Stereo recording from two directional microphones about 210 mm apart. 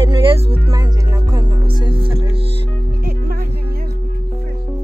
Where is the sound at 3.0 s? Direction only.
45° right (ahead or behind).